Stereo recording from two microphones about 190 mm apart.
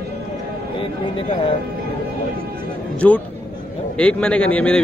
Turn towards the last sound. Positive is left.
turn(degrees=5)  # may be behind; listen again after turning